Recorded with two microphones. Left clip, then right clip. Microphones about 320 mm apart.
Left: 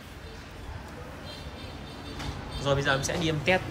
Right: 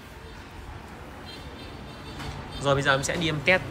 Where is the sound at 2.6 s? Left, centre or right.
Centre.